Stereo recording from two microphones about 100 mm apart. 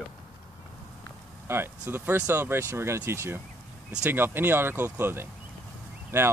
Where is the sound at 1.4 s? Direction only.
25° right (ahead or behind).